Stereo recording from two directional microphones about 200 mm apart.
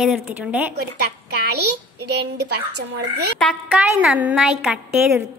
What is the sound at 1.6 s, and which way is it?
A child's voice, 55° right (ahead or behind).